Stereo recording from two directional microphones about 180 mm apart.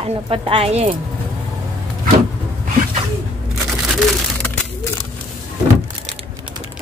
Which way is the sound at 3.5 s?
Centre (ahead or behind).